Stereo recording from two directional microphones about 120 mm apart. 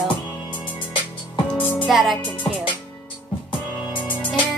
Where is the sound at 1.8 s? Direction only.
Centre (ahead or behind).